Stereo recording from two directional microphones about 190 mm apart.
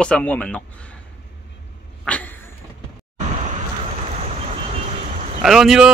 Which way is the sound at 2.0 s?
10° left (ahead or behind).